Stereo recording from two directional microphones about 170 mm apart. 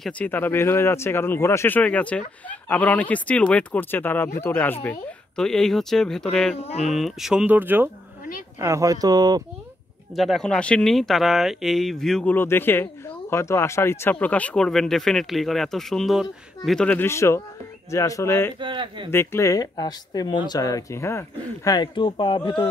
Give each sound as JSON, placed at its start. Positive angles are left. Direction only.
{"t": 0.0, "sound": "speech", "side_deg": 10}
{"t": 10.1, "sound": "speech", "side_deg": 0}
{"t": 18.6, "sound": "speech", "side_deg": -30}
{"t": 19.0, "sound": "speech", "side_deg": 15}